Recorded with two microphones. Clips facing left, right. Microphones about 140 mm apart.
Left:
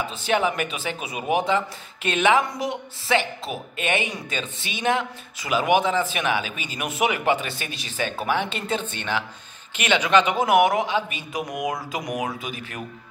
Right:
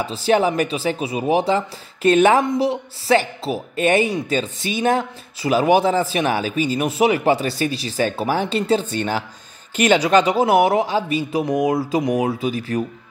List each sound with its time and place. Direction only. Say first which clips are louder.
0.0 s a man's voice: right 5 dB; 35° right (ahead or behind)
2.4 s a man's voice: right 8 dB; 25° right (ahead or behind)